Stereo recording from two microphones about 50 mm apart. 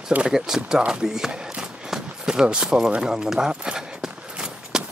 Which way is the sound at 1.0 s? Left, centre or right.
Centre.